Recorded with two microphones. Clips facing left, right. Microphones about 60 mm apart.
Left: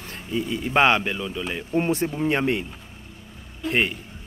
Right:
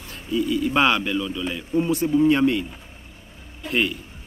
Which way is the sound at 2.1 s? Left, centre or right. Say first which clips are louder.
Right 5 dB; left.